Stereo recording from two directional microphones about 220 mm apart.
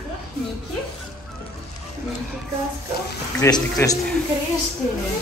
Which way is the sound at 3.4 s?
15° left (ahead or behind).